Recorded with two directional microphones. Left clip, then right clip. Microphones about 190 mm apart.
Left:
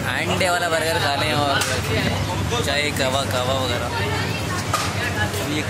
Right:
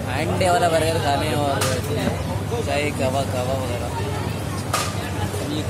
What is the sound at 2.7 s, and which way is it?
Speech, centre (ahead or behind).